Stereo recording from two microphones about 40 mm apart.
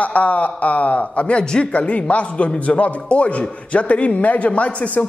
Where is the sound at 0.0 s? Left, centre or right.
Left.